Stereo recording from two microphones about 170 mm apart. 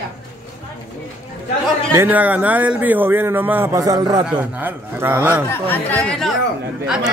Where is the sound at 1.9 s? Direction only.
10° right (ahead or behind).